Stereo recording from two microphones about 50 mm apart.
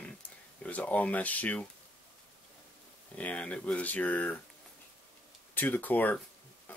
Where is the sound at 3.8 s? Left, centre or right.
Left.